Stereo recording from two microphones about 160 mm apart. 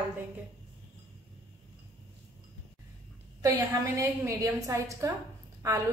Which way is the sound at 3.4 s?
20° right (ahead or behind).